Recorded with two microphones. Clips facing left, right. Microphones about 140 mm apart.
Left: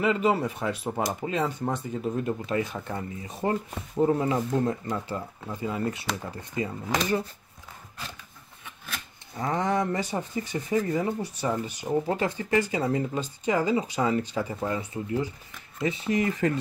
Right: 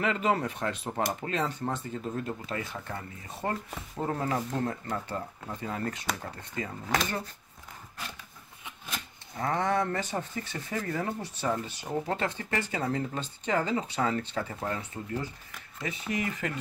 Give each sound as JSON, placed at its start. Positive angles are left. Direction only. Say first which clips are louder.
{"t": 0.0, "sound": "speech", "louder": "left 4 dB", "side_deg": 10}
{"t": 9.4, "sound": "speech", "louder": "left 2 dB", "side_deg": 15}
{"t": 15.8, "sound": "speech", "louder": "left 7 dB", "side_deg": 30}